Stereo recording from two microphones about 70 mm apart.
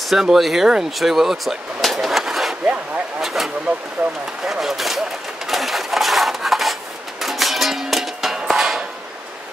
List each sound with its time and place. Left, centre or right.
0.1 s speech: centre
4.0 s speech: right
4.5 s speech: centre
5.5 s a sound: centre